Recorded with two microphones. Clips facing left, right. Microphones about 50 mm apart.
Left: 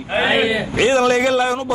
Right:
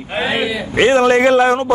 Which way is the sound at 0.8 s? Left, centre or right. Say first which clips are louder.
Right 4 dB; right.